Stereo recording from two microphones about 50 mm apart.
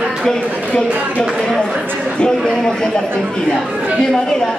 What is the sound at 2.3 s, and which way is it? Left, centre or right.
Speech, centre.